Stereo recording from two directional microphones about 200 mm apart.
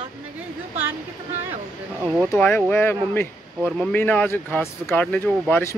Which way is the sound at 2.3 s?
10° left (ahead or behind).